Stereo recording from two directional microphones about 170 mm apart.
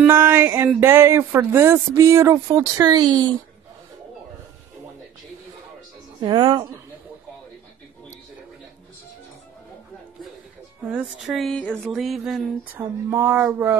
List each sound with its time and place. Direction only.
0.0 s speech: 10° right (ahead or behind)
6.1 s speech: 30° right (ahead or behind)
10.9 s speech: 5° right (ahead or behind)
13.1 s speech: 15° right (ahead or behind)